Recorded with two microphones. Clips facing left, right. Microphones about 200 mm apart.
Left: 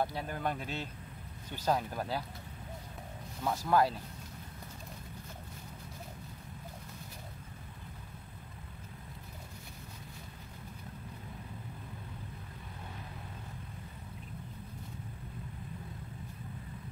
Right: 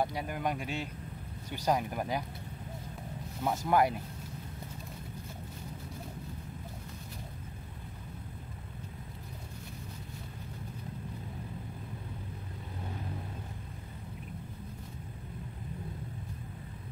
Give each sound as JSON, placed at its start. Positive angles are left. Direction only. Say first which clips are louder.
{"t": 0.0, "sound": "speech", "louder": "right 2 dB", "side_deg": -15}
{"t": 3.4, "sound": "speech", "louder": "right 1 dB", "side_deg": -20}